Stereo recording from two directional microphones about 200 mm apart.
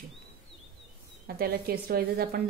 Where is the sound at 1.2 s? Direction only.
50° right (ahead or behind).